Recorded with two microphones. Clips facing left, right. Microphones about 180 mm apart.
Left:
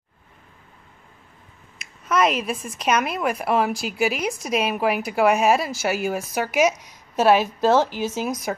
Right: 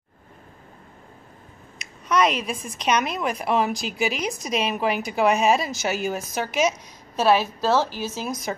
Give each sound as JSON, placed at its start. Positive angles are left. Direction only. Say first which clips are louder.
{"t": 1.8, "sound": "a woman's voice", "louder": "even", "side_deg": 5}